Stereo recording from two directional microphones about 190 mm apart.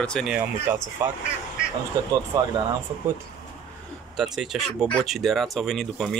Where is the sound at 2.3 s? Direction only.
20° right (ahead or behind).